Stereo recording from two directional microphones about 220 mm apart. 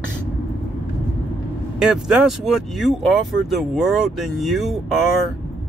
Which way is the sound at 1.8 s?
Centre (ahead or behind).